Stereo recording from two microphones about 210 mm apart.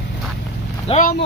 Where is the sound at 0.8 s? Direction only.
35° left (ahead or behind).